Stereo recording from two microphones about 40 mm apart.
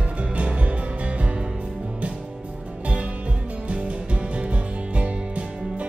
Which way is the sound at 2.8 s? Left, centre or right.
Right.